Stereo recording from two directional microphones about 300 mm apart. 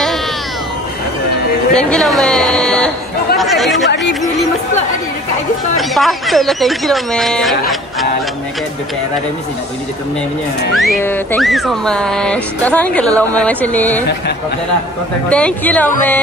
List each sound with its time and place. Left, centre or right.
1.7 s speech: centre
5.8 s speech: centre
10.7 s speech: centre
15.2 s speech: centre